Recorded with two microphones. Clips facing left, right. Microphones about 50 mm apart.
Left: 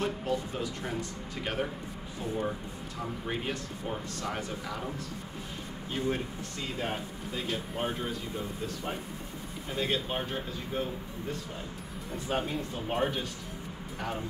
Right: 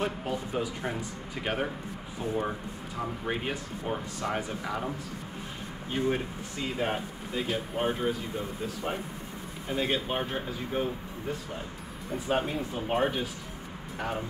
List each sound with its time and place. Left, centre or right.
0.0 s speech: centre
3.0 s speech: centre